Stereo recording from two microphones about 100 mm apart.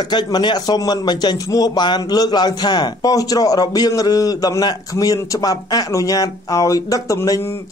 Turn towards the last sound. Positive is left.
turn(degrees=30)  # may be behind; listen again after turning